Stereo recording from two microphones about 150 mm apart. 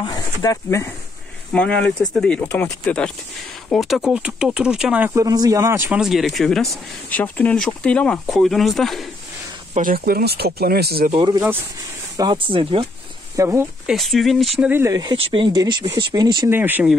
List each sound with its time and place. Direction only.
0.0 s speech: 25° left (ahead or behind)
1.5 s speech: 10° left (ahead or behind)
5.1 s speech: 25° right (ahead or behind)
5.9 s speech: centre (ahead or behind)
9.8 s speech: 75° right (ahead or behind); by 11.1 s 90° right
11.1 s speech: 30° right (ahead or behind)
13.4 s speech: 20° right (ahead or behind)
13.8 s speech: centre (ahead or behind)
14.7 s speech: 20° right (ahead or behind)
15.1 s speech: 35° right (ahead or behind)
16.4 s speech: 15° right (ahead or behind)